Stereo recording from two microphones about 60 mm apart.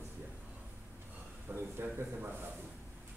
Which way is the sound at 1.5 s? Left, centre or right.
Right.